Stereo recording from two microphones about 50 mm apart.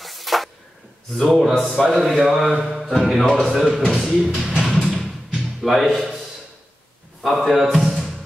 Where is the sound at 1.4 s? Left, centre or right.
Centre.